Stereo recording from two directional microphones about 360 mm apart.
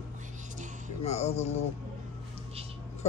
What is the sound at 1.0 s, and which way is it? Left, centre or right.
Speech, centre.